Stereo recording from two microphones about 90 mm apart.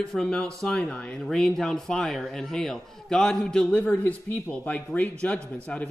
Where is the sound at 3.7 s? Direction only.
20° left (ahead or behind).